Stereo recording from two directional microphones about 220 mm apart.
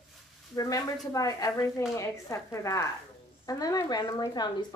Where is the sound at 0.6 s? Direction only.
15° left (ahead or behind).